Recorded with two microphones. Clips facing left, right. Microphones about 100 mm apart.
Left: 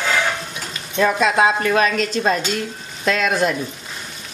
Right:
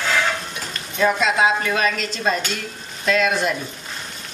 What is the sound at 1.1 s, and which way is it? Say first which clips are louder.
A woman's voice: left 2 dB; 45° left (ahead or behind).